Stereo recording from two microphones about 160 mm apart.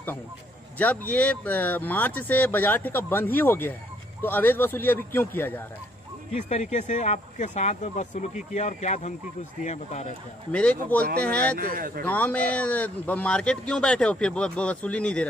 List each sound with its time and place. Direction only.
0.7 s speech: 10° left (ahead or behind)
6.3 s speech: 45° left (ahead or behind)
10.5 s speech: 5° left (ahead or behind)
11.5 s speech: 70° right (ahead or behind)
12.0 s speech: 10° left (ahead or behind)